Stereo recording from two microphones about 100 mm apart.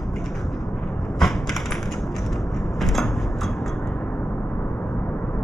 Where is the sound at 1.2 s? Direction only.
Centre (ahead or behind).